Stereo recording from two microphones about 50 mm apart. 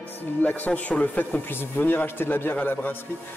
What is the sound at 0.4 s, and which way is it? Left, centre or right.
A man's voice, left.